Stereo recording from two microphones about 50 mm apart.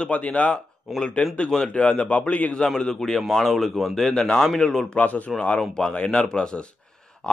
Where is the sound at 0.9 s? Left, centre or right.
Centre.